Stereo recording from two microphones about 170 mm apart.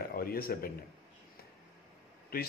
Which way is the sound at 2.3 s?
60° left (ahead or behind).